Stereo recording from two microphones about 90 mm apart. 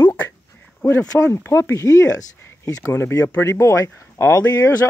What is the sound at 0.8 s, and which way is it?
Speech, 25° left (ahead or behind).